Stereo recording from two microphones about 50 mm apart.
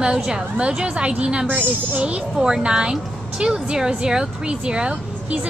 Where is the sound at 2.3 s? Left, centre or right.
Centre.